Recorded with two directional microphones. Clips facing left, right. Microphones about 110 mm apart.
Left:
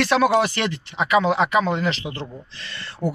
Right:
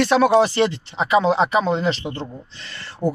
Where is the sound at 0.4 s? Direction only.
30° right (ahead or behind).